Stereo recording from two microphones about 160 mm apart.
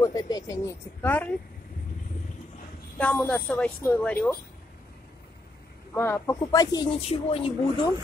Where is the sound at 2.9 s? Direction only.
10° left (ahead or behind).